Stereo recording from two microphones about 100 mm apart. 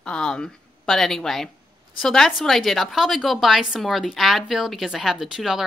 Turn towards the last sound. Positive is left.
turn(degrees=-5)  # may be behind; listen again after turning